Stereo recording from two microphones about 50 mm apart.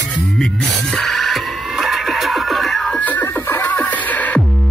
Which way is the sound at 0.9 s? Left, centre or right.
Centre.